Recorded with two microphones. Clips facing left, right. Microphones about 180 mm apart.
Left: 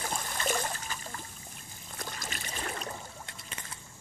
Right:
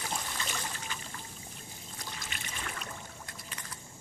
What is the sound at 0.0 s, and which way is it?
Trickle, 50° left (ahead or behind).